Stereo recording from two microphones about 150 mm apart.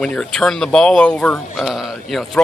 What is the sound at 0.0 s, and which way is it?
A man's voice, 5° left (ahead or behind).